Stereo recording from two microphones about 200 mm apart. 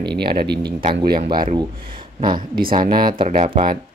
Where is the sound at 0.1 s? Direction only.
50° right (ahead or behind).